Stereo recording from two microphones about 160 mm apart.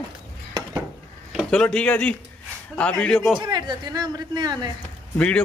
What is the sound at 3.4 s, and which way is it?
Speech, 25° right (ahead or behind).